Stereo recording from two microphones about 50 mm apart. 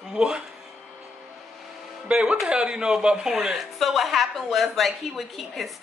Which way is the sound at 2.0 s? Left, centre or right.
Centre.